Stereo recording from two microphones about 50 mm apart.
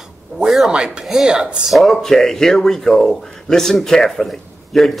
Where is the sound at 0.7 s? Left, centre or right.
Centre.